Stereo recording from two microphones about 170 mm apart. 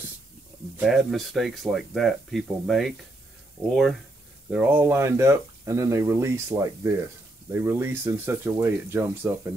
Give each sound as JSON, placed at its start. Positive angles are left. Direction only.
{"t": 0.7, "sound": "speech", "side_deg": 0}
{"t": 4.5, "sound": "speech", "side_deg": -10}